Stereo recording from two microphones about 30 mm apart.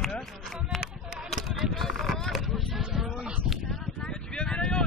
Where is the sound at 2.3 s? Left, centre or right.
Centre.